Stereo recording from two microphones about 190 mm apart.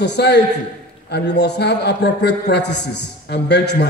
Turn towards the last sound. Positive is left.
turn(degrees=60)  # may be behind; listen again after turning